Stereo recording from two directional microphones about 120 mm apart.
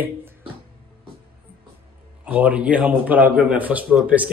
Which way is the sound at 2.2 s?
15° right (ahead or behind).